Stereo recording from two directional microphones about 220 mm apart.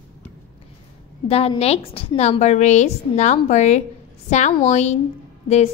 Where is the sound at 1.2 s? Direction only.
25° left (ahead or behind).